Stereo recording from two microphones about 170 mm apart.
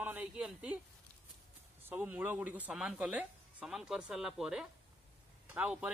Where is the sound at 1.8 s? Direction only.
10° right (ahead or behind).